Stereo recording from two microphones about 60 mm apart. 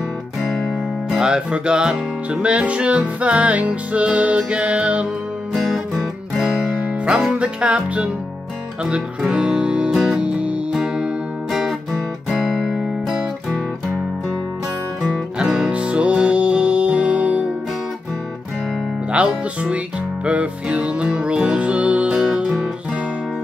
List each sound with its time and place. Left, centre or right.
1.1 s music: centre
5.9 s music: centre
6.7 s music: centre
9.2 s music: centre
10.2 s music: centre
15.0 s music: centre
15.7 s music: centre
19.1 s music: centre
22.1 s music: centre